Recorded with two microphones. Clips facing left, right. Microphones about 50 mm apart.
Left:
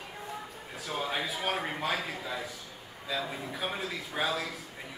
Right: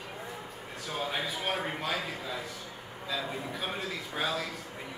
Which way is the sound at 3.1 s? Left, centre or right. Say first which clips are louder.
Even; centre.